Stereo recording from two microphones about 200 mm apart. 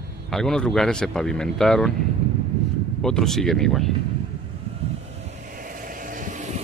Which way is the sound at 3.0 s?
5° left (ahead or behind).